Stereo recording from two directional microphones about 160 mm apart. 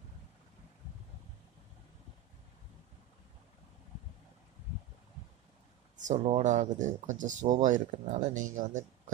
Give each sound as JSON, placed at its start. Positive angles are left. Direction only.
{"t": 5.9, "sound": "speech", "side_deg": -50}